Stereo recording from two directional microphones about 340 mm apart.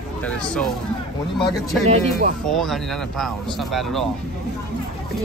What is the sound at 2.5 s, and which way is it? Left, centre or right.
Speech, centre.